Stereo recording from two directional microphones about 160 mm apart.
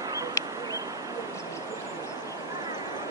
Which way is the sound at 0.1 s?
25° right (ahead or behind).